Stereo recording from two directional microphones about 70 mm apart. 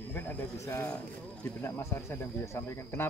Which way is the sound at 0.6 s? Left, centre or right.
Left.